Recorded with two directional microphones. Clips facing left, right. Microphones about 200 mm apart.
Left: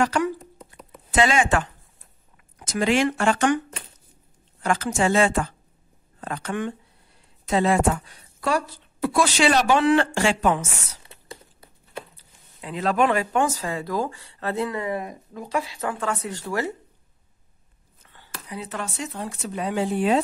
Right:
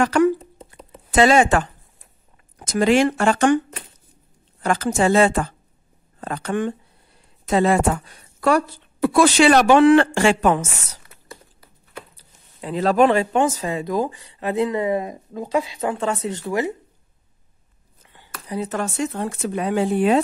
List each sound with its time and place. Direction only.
0.0 s speech: 55° right (ahead or behind)
0.4 s a sound: 30° right (ahead or behind)
1.1 s speech: 40° right (ahead or behind)
4.6 s speech: 35° right (ahead or behind)
7.4 s speech: 45° right (ahead or behind)
8.4 s speech: 60° right (ahead or behind)
12.5 s speech: 35° right (ahead or behind); by 16.7 s 20° right (ahead or behind)
18.0 s a sound: 15° right (ahead or behind)
18.5 s speech: 45° right (ahead or behind)